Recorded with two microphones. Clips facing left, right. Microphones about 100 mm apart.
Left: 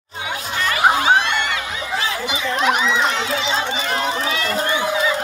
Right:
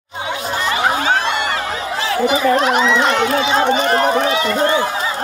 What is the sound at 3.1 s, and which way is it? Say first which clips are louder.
Speech: right 6 dB; 60° right (ahead or behind).